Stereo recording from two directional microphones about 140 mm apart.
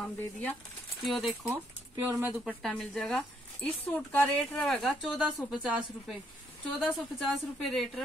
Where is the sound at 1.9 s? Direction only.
20° right (ahead or behind).